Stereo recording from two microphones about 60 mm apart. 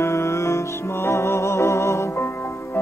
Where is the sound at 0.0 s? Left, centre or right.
Left.